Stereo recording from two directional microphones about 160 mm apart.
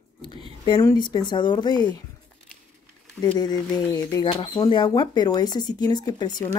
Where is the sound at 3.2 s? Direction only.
25° left (ahead or behind).